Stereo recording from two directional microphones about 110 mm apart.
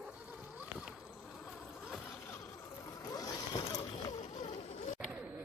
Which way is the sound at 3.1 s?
35° left (ahead or behind).